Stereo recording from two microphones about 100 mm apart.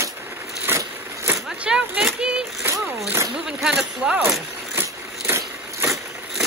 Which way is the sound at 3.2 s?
5° right (ahead or behind).